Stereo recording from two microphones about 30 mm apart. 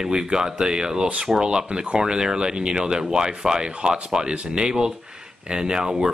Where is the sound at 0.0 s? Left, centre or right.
Right.